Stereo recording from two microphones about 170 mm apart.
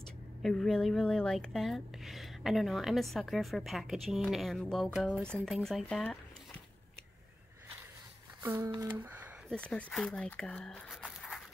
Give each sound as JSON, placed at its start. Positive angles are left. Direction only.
{"t": 0.4, "sound": "speech", "side_deg": 5}
{"t": 8.4, "sound": "a sound", "side_deg": -15}
{"t": 9.5, "sound": "speech", "side_deg": 5}